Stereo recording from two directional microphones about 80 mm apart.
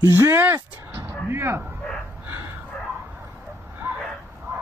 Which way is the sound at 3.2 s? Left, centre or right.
Right.